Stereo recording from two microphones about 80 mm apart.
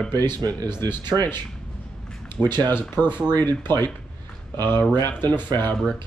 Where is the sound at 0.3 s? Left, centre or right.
Right.